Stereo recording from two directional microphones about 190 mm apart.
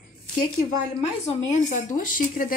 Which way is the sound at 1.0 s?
35° left (ahead or behind).